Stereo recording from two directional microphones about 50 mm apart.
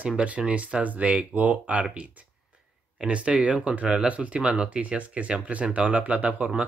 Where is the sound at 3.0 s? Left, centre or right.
Right.